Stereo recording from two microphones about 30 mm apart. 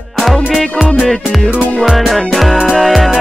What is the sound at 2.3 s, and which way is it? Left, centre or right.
Music, centre.